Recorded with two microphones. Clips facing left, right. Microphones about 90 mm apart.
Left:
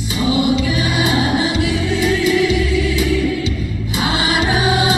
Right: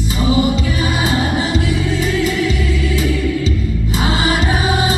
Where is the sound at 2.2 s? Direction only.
40° right (ahead or behind).